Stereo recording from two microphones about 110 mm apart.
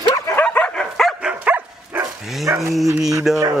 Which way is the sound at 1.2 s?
15° right (ahead or behind).